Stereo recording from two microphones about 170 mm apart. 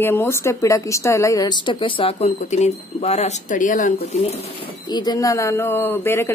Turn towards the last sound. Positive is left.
turn(degrees=15)  # may be behind; listen again after turning